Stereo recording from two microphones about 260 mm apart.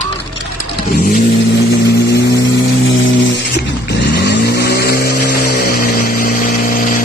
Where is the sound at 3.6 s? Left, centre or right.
Left.